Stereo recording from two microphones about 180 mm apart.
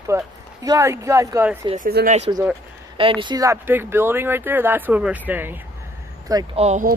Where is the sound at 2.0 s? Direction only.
65° right (ahead or behind).